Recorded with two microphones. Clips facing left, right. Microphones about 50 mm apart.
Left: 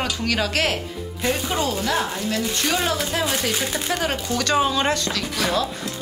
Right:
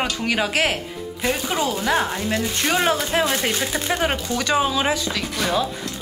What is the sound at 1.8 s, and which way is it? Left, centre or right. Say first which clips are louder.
A woman's voice: right 2 dB; centre.